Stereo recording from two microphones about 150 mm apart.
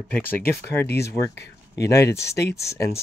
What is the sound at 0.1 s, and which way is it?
Speech, 15° left (ahead or behind).